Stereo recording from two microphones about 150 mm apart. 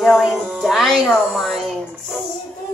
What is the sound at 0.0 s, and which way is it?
Speech, centre (ahead or behind).